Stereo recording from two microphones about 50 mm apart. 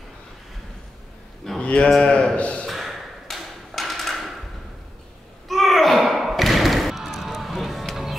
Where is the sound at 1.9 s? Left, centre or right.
Centre.